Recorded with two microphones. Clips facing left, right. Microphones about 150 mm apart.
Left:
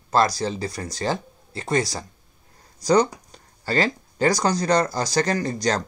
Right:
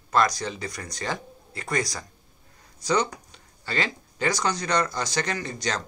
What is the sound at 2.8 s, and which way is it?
Speech, 40° left (ahead or behind).